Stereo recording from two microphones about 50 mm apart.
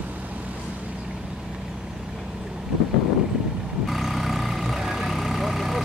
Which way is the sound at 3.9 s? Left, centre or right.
Centre.